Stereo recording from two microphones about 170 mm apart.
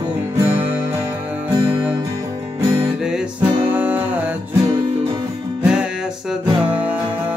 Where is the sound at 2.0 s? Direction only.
20° right (ahead or behind).